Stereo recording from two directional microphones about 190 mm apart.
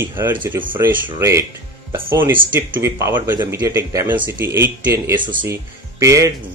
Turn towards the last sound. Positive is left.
turn(degrees=-15)  # may be behind; listen again after turning